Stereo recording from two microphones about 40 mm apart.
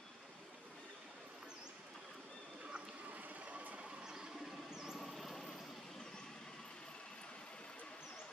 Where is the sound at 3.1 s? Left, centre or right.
Right.